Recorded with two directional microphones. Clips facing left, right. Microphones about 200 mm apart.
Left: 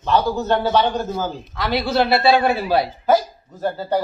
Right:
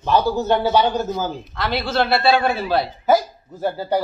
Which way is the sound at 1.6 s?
15° left (ahead or behind).